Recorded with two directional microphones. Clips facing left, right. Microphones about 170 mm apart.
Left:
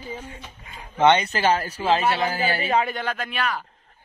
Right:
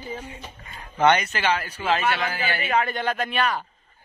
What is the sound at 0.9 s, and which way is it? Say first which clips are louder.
Speech: left 2 dB; 20° left (ahead or behind).